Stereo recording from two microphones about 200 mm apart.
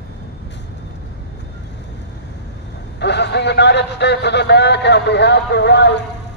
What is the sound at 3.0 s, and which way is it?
A man's voice, 60° left (ahead or behind).